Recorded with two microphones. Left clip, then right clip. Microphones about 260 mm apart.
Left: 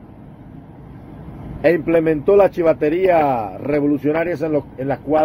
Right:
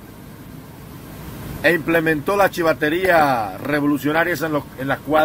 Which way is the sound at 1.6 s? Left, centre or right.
Left.